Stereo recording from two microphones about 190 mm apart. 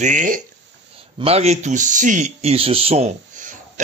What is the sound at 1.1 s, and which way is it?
Speech, 30° right (ahead or behind).